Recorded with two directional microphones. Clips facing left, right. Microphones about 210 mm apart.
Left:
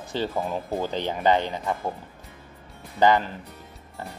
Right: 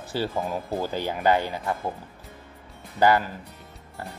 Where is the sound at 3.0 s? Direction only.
10° right (ahead or behind).